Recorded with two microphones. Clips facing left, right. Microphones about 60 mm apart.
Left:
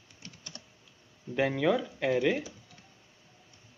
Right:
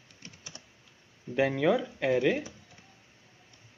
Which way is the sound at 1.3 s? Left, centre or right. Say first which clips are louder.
Right 1 dB; centre.